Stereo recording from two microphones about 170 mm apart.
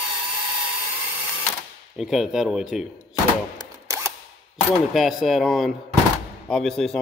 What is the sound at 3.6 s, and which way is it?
Camera, 20° right (ahead or behind).